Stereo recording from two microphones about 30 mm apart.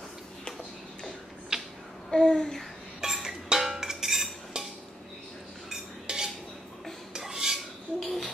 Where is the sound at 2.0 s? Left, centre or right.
Left.